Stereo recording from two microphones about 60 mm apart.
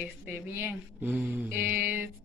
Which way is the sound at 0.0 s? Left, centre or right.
Right.